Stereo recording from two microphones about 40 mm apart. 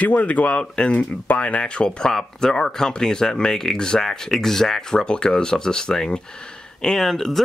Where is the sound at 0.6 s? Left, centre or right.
Left.